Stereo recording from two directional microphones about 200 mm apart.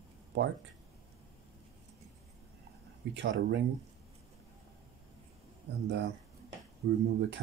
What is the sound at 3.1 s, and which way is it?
Speech, 65° right (ahead or behind).